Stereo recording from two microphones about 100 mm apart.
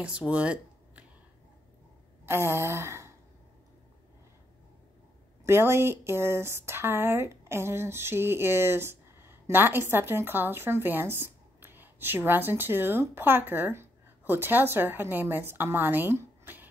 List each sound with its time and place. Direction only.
0.0 s speech: 10° right (ahead or behind)
2.2 s a sound: 25° right (ahead or behind)
5.4 s speech: 25° right (ahead or behind)